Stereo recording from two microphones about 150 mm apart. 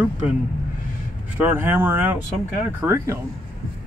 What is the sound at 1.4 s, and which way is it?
Speech, 15° right (ahead or behind).